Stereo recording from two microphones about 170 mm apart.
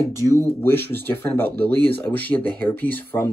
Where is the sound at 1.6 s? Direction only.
70° right (ahead or behind).